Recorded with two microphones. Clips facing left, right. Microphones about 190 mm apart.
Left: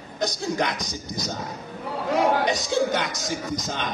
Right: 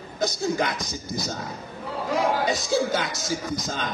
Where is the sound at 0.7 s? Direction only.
20° left (ahead or behind).